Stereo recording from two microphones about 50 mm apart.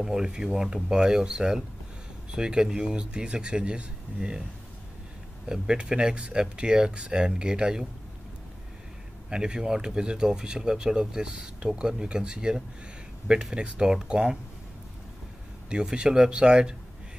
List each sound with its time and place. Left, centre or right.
0.0 s speech: centre
5.5 s speech: centre
9.3 s speech: centre
15.7 s speech: centre